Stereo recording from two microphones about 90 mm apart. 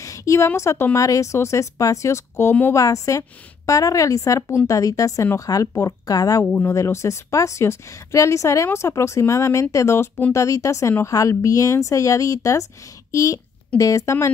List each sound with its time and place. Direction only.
0.0 s a sound: 35° left (ahead or behind)
0.6 s speech: 35° left (ahead or behind)
6.4 s speech: 20° left (ahead or behind)
6.7 s speech: 35° left (ahead or behind)